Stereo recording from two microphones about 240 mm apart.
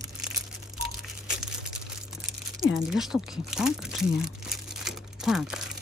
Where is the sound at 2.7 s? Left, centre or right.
Centre.